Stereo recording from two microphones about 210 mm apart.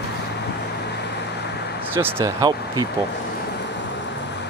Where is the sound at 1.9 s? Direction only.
10° right (ahead or behind).